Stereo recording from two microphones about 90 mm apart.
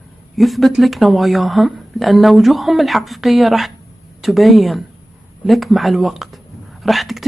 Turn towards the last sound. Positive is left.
turn(degrees=0)  # may be behind; listen again after turning